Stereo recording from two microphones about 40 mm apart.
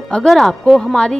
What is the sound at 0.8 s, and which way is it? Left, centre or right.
Speech, centre.